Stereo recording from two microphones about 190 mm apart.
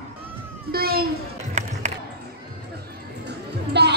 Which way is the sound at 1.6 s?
40° right (ahead or behind).